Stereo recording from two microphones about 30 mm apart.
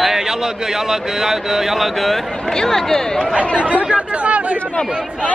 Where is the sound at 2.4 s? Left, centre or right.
Centre.